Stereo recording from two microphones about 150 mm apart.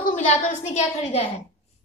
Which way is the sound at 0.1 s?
55° left (ahead or behind).